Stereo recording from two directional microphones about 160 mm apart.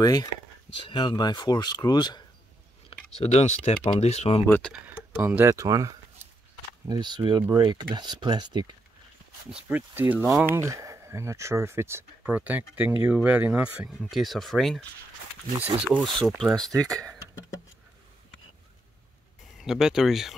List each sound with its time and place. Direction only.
0.0 s speech: 25° left (ahead or behind)
2.9 s speech: 40° left (ahead or behind)
4.5 s speech: 5° left (ahead or behind)
4.9 s speech: 10° right (ahead or behind); by 8.7 s 25° right (ahead or behind)
9.7 s speech: 10° right (ahead or behind)
16.8 s speech: 20° right (ahead or behind)
19.6 s speech: 5° right (ahead or behind)